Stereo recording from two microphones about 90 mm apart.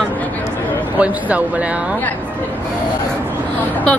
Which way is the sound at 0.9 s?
15° right (ahead or behind).